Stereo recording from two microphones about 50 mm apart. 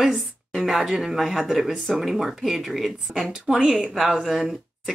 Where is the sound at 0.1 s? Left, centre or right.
Centre.